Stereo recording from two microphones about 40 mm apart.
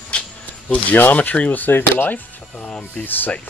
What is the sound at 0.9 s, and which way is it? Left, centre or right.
Speech, left.